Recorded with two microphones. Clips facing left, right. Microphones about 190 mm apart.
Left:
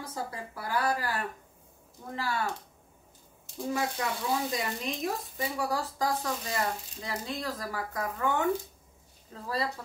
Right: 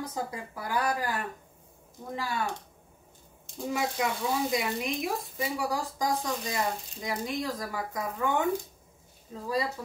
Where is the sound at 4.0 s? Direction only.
15° right (ahead or behind).